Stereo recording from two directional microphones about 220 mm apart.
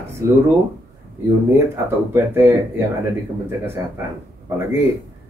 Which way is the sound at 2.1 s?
10° right (ahead or behind).